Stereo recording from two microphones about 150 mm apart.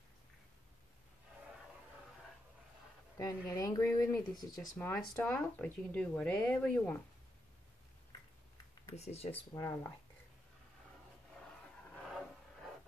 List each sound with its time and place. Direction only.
3.2 s speech: 20° left (ahead or behind)
4.8 s speech: 10° left (ahead or behind)
8.9 s speech: 45° left (ahead or behind)
9.5 s speech: 20° left (ahead or behind)
12.0 s a sound: centre (ahead or behind)